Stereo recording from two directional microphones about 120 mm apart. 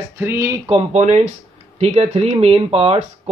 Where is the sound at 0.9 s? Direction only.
75° right (ahead or behind).